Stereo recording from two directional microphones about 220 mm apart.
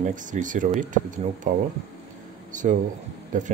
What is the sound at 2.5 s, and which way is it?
Speech, 35° right (ahead or behind).